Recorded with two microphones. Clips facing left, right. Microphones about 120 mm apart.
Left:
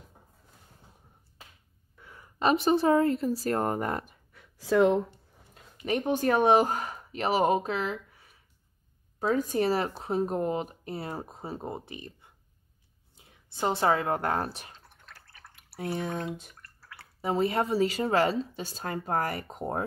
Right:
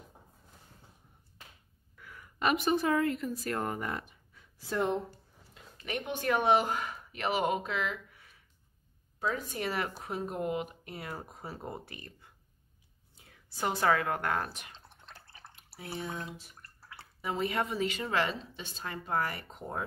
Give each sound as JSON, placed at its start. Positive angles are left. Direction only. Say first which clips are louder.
{"t": 2.0, "sound": "a woman's voice", "louder": "left 4 dB", "side_deg": 30}
{"t": 4.3, "sound": "a sound", "louder": "left 10 dB", "side_deg": 80}
{"t": 5.9, "sound": "speech", "louder": "left 6 dB", "side_deg": 40}
{"t": 9.2, "sound": "speech", "louder": "left 8 dB", "side_deg": 40}
{"t": 14.7, "sound": "drip", "louder": "even", "side_deg": -25}
{"t": 15.7, "sound": "speech", "louder": "left 7 dB", "side_deg": 55}
{"t": 16.6, "sound": "drip", "louder": "left 1 dB", "side_deg": -25}
{"t": 17.2, "sound": "speech", "louder": "left 5 dB", "side_deg": 35}